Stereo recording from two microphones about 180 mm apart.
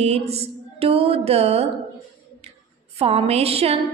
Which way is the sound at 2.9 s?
35° right (ahead or behind).